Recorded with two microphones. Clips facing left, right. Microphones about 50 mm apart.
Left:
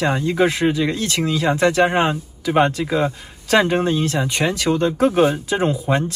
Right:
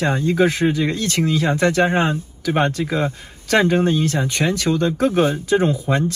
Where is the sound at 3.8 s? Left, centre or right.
Right.